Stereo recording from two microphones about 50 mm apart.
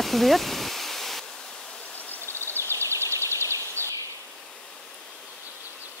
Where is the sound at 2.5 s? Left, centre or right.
Right.